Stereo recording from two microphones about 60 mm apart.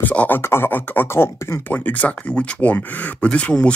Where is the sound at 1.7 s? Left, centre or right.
Left.